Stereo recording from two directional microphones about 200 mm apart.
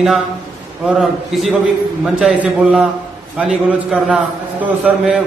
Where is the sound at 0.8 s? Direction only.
5° right (ahead or behind).